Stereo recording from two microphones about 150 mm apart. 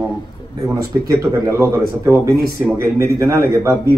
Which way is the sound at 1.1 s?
20° right (ahead or behind).